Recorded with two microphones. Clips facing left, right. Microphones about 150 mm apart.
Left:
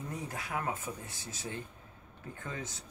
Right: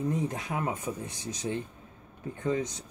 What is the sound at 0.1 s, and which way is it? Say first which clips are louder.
Speech: right 7 dB; 20° right (ahead or behind).